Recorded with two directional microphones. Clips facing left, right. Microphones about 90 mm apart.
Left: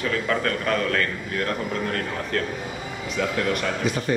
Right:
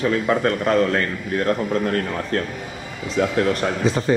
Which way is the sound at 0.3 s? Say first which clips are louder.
Right 5 dB; 30° right (ahead or behind).